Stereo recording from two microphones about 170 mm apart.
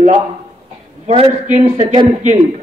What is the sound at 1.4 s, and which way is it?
Speech, 45° right (ahead or behind).